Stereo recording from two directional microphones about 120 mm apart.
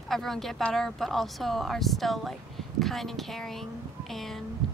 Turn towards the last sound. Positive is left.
turn(degrees=0)  # may be behind; listen again after turning